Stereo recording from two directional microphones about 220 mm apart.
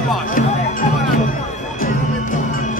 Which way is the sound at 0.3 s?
40° left (ahead or behind).